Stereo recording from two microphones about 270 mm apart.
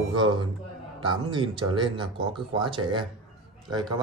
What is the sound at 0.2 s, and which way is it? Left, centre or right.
Speech, centre.